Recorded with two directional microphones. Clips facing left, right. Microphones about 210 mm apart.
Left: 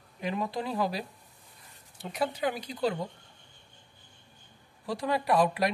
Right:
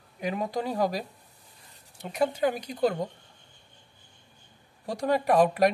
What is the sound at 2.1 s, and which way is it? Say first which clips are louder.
Speech: right 5 dB; 50° right (ahead or behind).